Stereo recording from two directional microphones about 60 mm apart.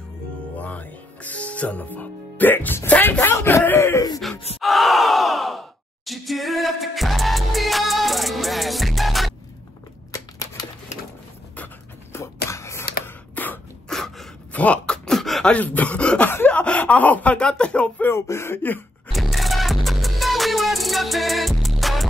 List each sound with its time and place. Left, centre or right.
0.6 s music: left
3.0 s speech: left
4.2 s a sound: centre
12.1 s a sound: left
13.3 s sneeze: left
13.8 s gasp: centre
14.5 s a sound: left
15.0 s beatboxing: centre
15.4 s a sound: left
16.4 s speech: left
18.0 s speech: left
19.1 s music: centre